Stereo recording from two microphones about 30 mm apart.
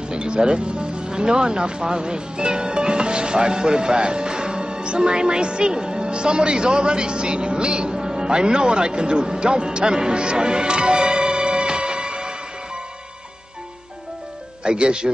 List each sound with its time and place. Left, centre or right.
0.1 s speech: right
14.6 s speech: right